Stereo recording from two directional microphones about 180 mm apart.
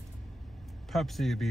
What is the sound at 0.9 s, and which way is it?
Music, centre (ahead or behind).